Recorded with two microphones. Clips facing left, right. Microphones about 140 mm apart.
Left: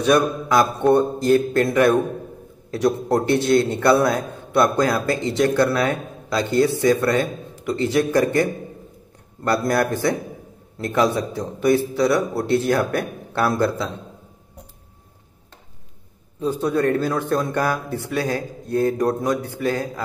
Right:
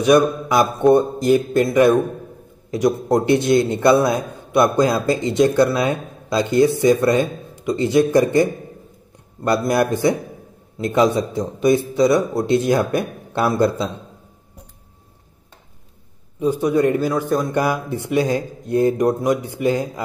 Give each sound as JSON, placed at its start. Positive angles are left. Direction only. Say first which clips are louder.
{"t": 0.0, "sound": "a man's voice", "louder": "right 3 dB", "side_deg": -15}
{"t": 16.3, "sound": "a man's voice", "louder": "right 3 dB", "side_deg": -15}
{"t": 17.1, "sound": "speech", "louder": "right 2 dB", "side_deg": -5}
{"t": 17.5, "sound": "a man's voice", "louder": "right 2 dB", "side_deg": -15}